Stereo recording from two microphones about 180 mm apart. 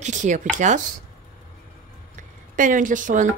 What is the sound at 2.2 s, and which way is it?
A woman's voice, 45° right (ahead or behind).